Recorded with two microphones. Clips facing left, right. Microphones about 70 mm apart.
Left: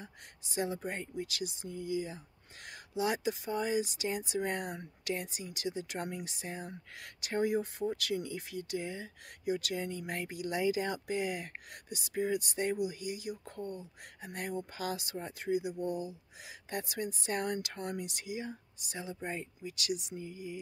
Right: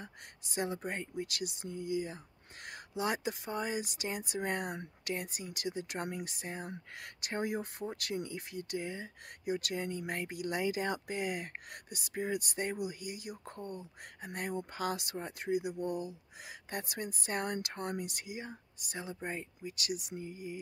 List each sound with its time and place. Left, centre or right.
0.0 s speech: right